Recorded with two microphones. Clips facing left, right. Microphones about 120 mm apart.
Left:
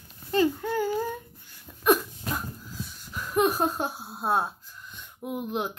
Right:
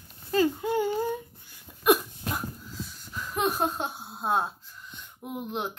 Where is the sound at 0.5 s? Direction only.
20° right (ahead or behind).